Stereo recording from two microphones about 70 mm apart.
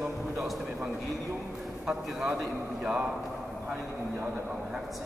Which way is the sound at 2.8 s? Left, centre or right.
Centre.